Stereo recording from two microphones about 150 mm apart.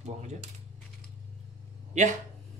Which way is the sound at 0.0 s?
50° right (ahead or behind).